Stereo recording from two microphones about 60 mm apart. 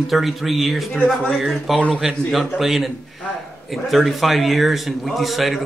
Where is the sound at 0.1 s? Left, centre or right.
Centre.